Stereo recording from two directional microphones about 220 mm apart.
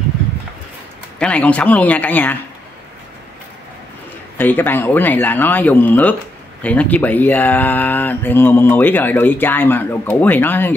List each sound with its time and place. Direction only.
1.2 s speech: 5° left (ahead or behind)
4.4 s speech: 10° left (ahead or behind)